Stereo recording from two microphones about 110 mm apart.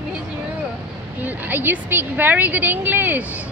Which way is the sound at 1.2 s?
15° right (ahead or behind).